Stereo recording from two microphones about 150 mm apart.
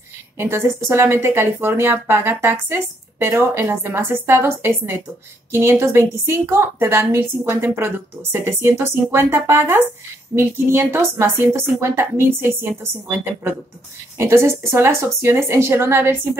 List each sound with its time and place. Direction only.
0.4 s speech: 15° right (ahead or behind)